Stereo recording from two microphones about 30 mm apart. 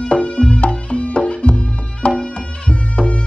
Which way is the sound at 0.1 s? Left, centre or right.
Left.